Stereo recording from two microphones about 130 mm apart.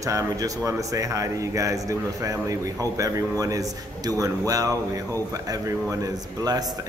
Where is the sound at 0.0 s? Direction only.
25° right (ahead or behind).